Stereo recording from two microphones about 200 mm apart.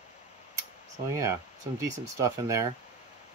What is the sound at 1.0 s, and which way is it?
Speech, 15° right (ahead or behind).